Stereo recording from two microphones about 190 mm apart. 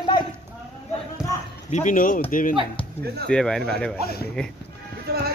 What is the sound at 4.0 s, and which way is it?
Speech, 55° left (ahead or behind).